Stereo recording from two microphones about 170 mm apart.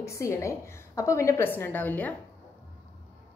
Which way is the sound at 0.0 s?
15° left (ahead or behind).